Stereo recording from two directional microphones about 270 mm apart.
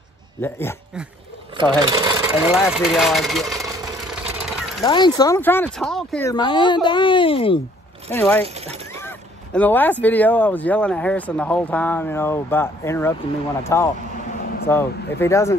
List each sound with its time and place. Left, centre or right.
0.4 s speech: centre
1.8 s speech: centre
4.1 s vehicle: centre
4.8 s speech: centre
6.3 s speech: centre
8.1 s speech: centre
9.0 s a sound: centre
10.0 s speech: centre